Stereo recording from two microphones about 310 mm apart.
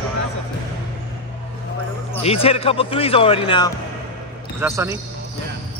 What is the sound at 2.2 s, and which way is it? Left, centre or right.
Speech, centre.